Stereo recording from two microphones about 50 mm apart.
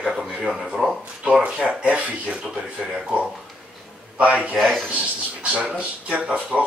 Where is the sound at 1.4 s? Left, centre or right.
Right.